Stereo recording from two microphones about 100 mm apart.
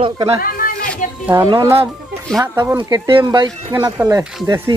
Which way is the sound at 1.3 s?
55° right (ahead or behind).